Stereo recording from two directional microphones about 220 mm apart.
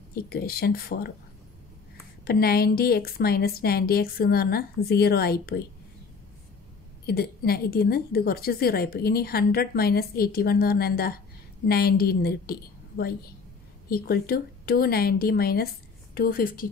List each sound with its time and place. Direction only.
0.1 s a woman's voice: 45° left (ahead or behind)
2.2 s a woman's voice: 45° left (ahead or behind)
7.1 s a woman's voice: 45° left (ahead or behind)